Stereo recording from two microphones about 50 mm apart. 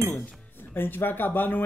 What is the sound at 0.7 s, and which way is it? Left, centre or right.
Speech, left.